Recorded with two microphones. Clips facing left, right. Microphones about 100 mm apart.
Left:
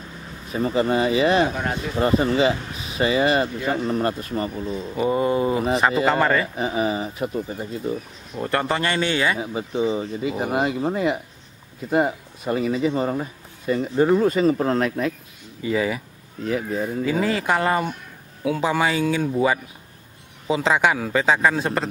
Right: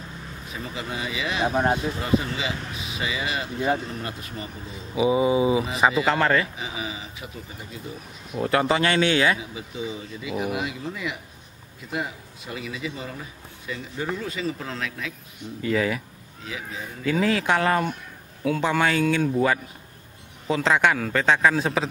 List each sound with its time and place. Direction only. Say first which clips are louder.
0.5 s speech: left 13 dB; 45° left (ahead or behind)
1.5 s speech: right 4 dB; 30° right (ahead or behind)
2.0 s speech: left 7 dB; 45° left (ahead or behind)
4.9 s a man's voice: right 1 dB; 5° right (ahead or behind)
6.5 s speech: left 10 dB; 50° left (ahead or behind)
8.3 s a man's voice: right 1 dB; 5° right (ahead or behind)
9.4 s speech: left 9 dB; 45° left (ahead or behind)
15.6 s a man's voice: left 1 dB; 5° left (ahead or behind)
16.4 s speech: left 11 dB; 50° left (ahead or behind)
17.0 s a man's voice: right 2 dB; centre (ahead or behind)